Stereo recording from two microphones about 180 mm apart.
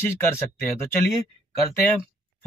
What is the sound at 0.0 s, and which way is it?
Speech, 15° left (ahead or behind).